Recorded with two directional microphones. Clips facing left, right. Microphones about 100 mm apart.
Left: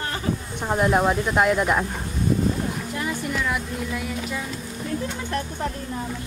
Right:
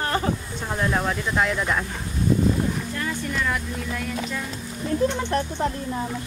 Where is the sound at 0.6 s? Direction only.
20° left (ahead or behind).